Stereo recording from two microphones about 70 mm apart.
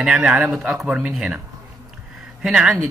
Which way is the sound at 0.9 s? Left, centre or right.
Right.